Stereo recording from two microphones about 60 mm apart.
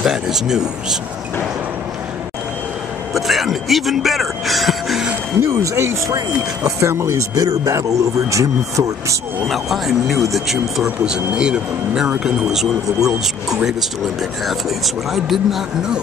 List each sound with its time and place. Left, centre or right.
0.0 s speech: centre
3.2 s speech: centre
5.4 s speech: right
6.9 s speech: right
7.3 s speech: right
9.5 s speech: centre
11.3 s speech: centre
15.1 s speech: centre